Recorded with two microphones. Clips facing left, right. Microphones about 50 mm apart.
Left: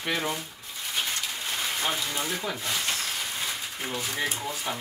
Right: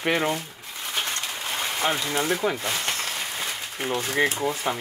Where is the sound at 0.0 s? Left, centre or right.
Right.